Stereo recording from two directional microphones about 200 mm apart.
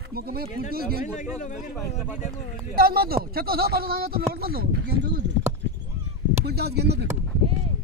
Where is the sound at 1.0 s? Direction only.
40° left (ahead or behind).